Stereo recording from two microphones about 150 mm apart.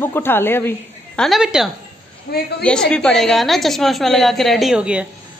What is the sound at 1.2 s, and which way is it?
Speech, centre (ahead or behind).